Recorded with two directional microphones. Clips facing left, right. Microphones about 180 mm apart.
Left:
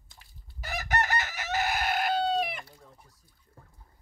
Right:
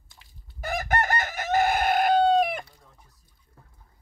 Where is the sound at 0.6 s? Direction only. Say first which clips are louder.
Right 4 dB; 50° right (ahead or behind).